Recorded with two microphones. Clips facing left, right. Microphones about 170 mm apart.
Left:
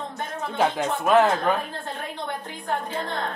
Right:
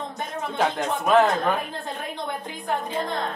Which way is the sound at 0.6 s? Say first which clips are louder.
Left 1 dB; 5° left (ahead or behind).